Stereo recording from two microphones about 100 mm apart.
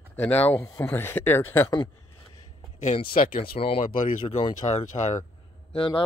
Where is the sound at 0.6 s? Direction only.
35° left (ahead or behind).